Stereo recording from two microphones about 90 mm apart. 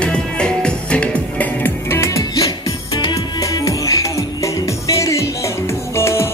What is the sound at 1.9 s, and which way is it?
Music, 30° left (ahead or behind).